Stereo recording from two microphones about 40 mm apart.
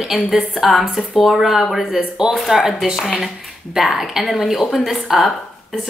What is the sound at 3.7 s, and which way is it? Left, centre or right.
A woman's voice, centre.